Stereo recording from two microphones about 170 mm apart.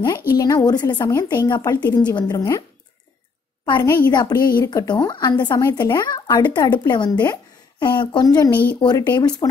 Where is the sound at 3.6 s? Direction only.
25° left (ahead or behind).